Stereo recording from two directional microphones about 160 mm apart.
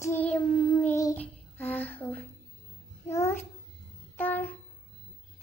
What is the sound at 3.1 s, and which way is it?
Babbling, 20° left (ahead or behind).